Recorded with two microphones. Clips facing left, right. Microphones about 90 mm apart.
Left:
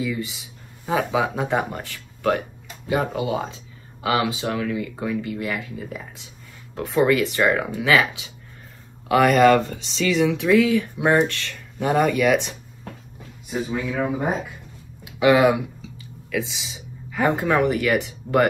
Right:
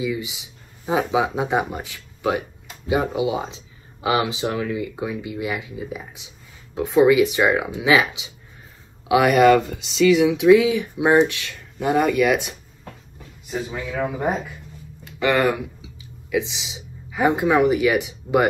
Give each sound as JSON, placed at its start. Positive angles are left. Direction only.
{"t": 0.0, "sound": "speech", "side_deg": -15}
{"t": 11.8, "sound": "speech", "side_deg": 0}
{"t": 15.0, "sound": "speech", "side_deg": 10}
{"t": 15.8, "sound": "speech", "side_deg": -20}